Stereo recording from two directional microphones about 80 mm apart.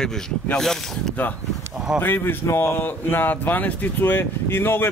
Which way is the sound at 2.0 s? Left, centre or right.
Left.